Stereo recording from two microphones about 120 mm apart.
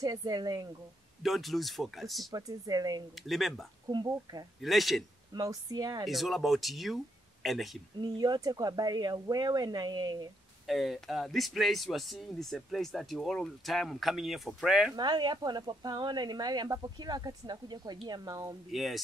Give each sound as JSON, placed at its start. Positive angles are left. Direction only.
{"t": 0.0, "sound": "speech", "side_deg": -30}
{"t": 1.2, "sound": "speech", "side_deg": 0}
{"t": 2.3, "sound": "speech", "side_deg": -30}
{"t": 3.2, "sound": "speech", "side_deg": 0}
{"t": 3.9, "sound": "speech", "side_deg": -35}
{"t": 4.6, "sound": "speech", "side_deg": 0}
{"t": 5.3, "sound": "speech", "side_deg": -30}
{"t": 6.0, "sound": "speech", "side_deg": 0}
{"t": 8.0, "sound": "speech", "side_deg": -35}
{"t": 10.7, "sound": "speech", "side_deg": 0}
{"t": 15.0, "sound": "speech", "side_deg": -40}
{"t": 18.7, "sound": "speech", "side_deg": 0}